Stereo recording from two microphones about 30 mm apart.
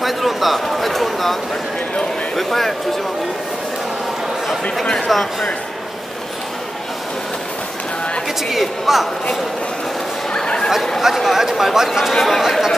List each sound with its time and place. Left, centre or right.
0.0 s speech: centre
5.0 s speech: centre
8.5 s speech: centre
10.3 s chatter: left
11.0 s speech: centre
12.1 s speech: centre